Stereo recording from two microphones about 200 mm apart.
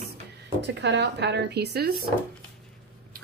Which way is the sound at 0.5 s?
60° right (ahead or behind).